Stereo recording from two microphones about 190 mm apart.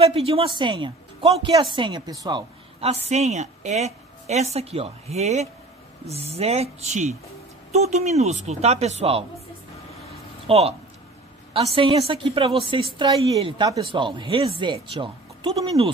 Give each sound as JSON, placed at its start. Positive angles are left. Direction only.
{"t": 0.0, "sound": "a woman's voice", "side_deg": -30}
{"t": 10.4, "sound": "a woman's voice", "side_deg": -30}